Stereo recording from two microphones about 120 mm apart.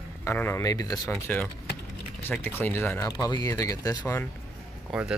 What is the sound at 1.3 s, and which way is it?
Speech, 15° left (ahead or behind).